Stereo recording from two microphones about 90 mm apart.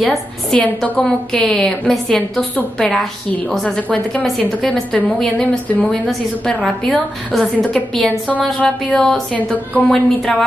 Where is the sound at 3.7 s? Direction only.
15° left (ahead or behind).